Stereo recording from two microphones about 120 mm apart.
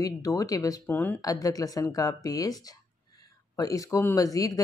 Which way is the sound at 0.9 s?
15° left (ahead or behind).